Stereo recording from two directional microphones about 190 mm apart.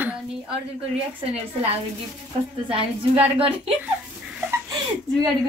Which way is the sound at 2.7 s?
30° right (ahead or behind).